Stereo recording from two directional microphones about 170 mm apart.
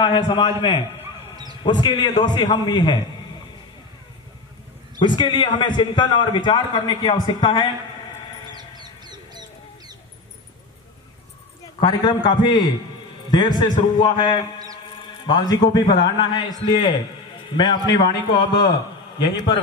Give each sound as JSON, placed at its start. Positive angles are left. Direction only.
{"t": 0.0, "sound": "a man's voice", "side_deg": 30}
{"t": 1.3, "sound": "a sound", "side_deg": -25}
{"t": 1.6, "sound": "a man's voice", "side_deg": 25}
{"t": 5.0, "sound": "a man's voice", "side_deg": 25}
{"t": 8.5, "sound": "chicken", "side_deg": -25}
{"t": 11.8, "sound": "a man's voice", "side_deg": 25}